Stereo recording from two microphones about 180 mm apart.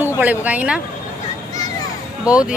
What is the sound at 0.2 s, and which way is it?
Speech, 10° right (ahead or behind).